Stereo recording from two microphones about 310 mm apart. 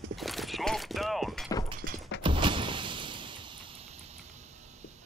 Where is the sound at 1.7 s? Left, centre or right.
Right.